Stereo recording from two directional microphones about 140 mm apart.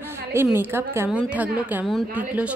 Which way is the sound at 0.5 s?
15° right (ahead or behind).